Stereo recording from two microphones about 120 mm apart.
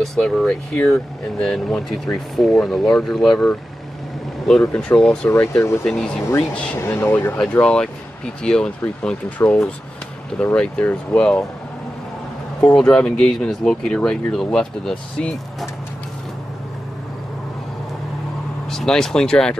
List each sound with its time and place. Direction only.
0.0 s speech: centre (ahead or behind)
5.3 s speech: 25° left (ahead or behind)
5.9 s speech: 5° left (ahead or behind)
6.8 s speech: 20° left (ahead or behind)
7.6 s speech: 5° left (ahead or behind)
10.4 s speech: 10° left (ahead or behind)
12.7 s speech: 5° left (ahead or behind)
18.7 s speech: 5° left (ahead or behind)